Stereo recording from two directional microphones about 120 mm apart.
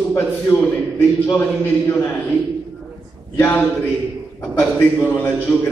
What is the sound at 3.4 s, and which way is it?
A man's voice, 15° left (ahead or behind).